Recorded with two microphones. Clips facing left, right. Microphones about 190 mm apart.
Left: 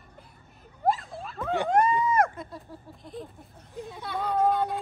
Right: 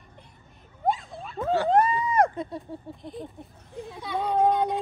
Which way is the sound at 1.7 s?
30° right (ahead or behind).